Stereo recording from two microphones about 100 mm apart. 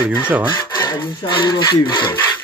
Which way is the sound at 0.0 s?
15° right (ahead or behind).